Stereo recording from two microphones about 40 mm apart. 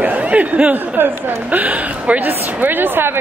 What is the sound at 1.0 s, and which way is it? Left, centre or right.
Speech, right.